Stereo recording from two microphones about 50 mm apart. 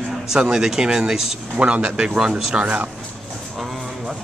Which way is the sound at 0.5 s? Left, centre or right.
Centre.